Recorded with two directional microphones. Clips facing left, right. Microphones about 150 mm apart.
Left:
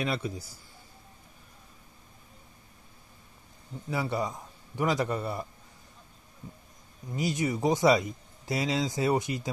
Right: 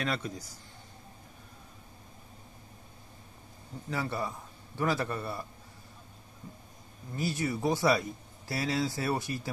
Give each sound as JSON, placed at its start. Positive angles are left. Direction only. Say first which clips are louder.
{"t": 0.0, "sound": "speech", "louder": "left 2 dB", "side_deg": 10}
{"t": 3.9, "sound": "speech", "louder": "left 3 dB", "side_deg": 15}
{"t": 7.1, "sound": "speech", "louder": "left 3 dB", "side_deg": 15}